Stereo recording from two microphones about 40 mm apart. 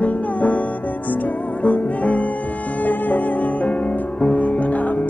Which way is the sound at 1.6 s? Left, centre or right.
Left.